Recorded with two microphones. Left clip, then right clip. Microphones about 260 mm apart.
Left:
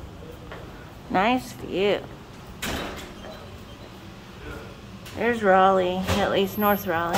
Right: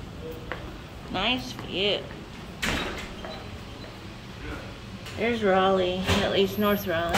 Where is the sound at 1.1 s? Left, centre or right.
Left.